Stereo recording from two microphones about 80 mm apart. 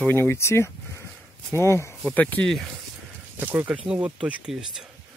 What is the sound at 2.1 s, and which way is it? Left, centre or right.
Speech, centre.